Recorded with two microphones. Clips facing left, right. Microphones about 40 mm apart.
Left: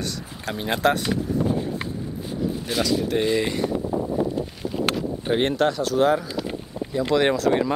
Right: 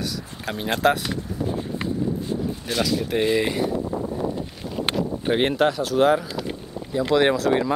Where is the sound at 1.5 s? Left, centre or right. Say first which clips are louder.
Left 1 dB; centre.